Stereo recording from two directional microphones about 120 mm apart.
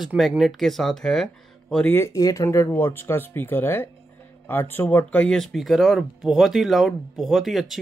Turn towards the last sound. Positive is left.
turn(degrees=0)  # may be behind; listen again after turning